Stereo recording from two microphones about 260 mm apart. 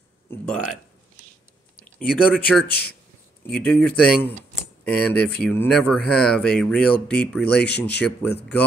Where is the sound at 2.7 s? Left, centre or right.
Left.